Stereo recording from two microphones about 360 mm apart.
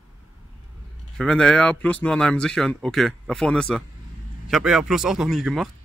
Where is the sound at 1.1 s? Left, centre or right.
Centre.